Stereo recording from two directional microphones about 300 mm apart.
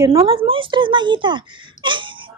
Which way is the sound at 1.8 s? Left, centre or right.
Centre.